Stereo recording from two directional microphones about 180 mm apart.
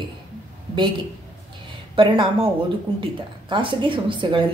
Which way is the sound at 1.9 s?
30° right (ahead or behind).